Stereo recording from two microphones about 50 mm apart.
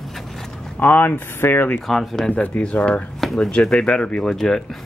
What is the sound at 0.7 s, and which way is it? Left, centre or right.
Speech, left.